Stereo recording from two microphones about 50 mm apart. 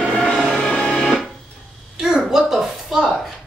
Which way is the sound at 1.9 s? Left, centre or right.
Centre.